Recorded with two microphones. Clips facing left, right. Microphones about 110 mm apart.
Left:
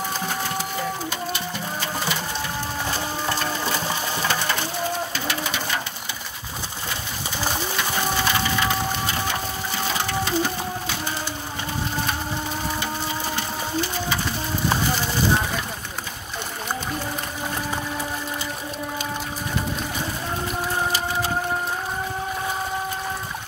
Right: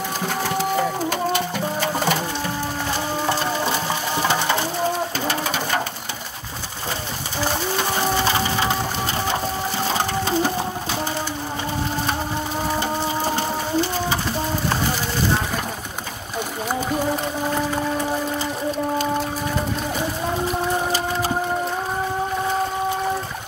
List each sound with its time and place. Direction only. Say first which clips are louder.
1.1 s music: right 7 dB; 55° right (ahead or behind)
4.3 s crushing: right 5 dB; 25° right (ahead or behind)
5.2 s bird: right 4 dB; 40° right (ahead or behind)
8.3 s wood: right 2 dB; 30° right (ahead or behind)
9.9 s sewing machine: right 2 dB; 35° right (ahead or behind)
12.7 s a sound: right 5 dB; 40° right (ahead or behind)